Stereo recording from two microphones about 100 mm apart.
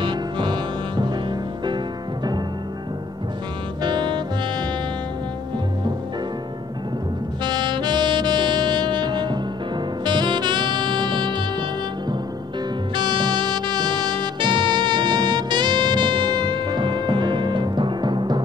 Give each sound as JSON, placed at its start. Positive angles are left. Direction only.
{"t": 0.0, "sound": "music", "side_deg": -50}
{"t": 3.8, "sound": "saxophone", "side_deg": -50}
{"t": 7.4, "sound": "saxophone", "side_deg": -50}
{"t": 12.9, "sound": "music", "side_deg": -50}